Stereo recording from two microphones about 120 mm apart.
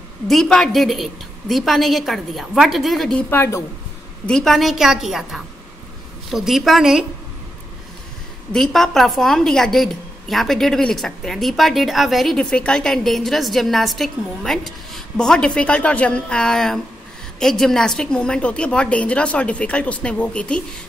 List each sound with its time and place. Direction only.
0.3 s a woman's voice: 5° left (ahead or behind)
3.3 s a woman's voice: 20° left (ahead or behind)
4.3 s a woman's voice: 5° left (ahead or behind)
8.5 s a woman's voice: 5° left (ahead or behind)